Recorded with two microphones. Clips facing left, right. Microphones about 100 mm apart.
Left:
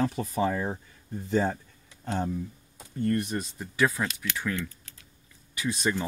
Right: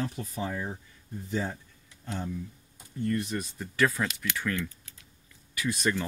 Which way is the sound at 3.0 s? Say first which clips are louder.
Left 3 dB; 55° left (ahead or behind).